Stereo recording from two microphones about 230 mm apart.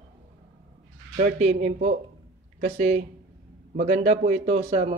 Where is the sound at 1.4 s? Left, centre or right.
Right.